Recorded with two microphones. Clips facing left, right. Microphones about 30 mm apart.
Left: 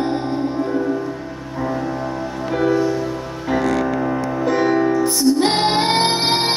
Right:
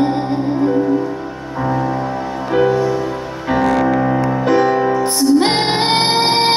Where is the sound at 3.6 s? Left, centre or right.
Right.